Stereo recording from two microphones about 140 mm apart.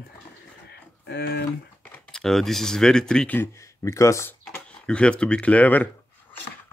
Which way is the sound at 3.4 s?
20° left (ahead or behind).